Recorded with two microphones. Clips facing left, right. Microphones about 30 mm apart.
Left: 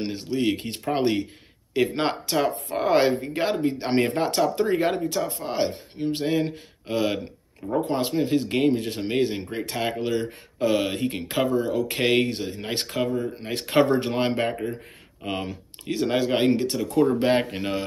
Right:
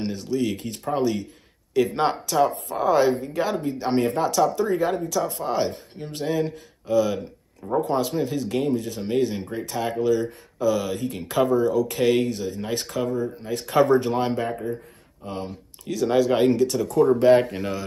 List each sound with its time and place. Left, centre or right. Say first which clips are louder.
0.1 s speech: left 1 dB; left
2.2 s speech: right 3 dB; left
5.3 s speech: right 2 dB; centre
6.1 s speech: right 2 dB; left
7.6 s speech: right 1 dB; left
8.3 s speech: left 2 dB; left
11.9 s speech: right 1 dB; left
15.2 s speech: left 3 dB; left
15.8 s speech: right 3 dB; left
16.8 s speech: even; left
17.1 s speech: right 5 dB; left